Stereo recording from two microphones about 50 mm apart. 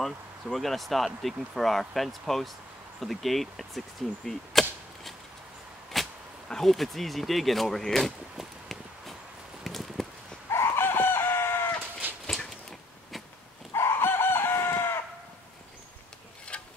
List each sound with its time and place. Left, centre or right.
0.0 s speech: centre
4.3 s chop: centre
5.9 s arrow: centre
6.5 s speech: centre
9.6 s a sound: centre
10.5 s chicken: left
12.0 s horse: right
13.7 s chicken: left
16.5 s a sound: left